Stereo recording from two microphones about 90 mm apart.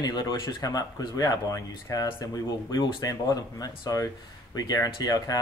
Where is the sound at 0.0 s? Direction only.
50° left (ahead or behind).